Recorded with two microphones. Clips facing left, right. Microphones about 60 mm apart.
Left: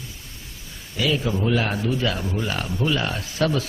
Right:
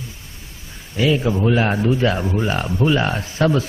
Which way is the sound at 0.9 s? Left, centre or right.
Right.